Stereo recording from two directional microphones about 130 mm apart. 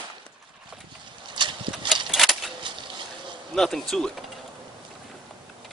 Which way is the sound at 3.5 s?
5° left (ahead or behind).